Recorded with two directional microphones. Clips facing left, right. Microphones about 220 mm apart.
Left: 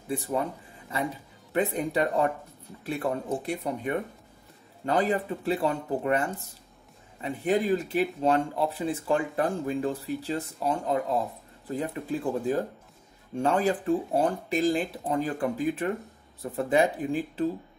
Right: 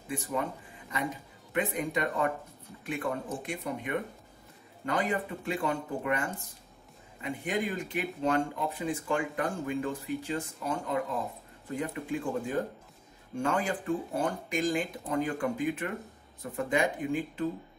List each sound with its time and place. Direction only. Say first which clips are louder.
1.5 s speech: left 4 dB; 35° left (ahead or behind)